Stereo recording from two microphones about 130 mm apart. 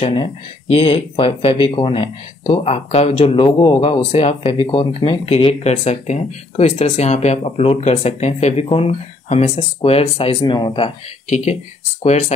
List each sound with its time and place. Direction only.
0.0 s speech: 45° left (ahead or behind)
11.2 s speech: 60° left (ahead or behind)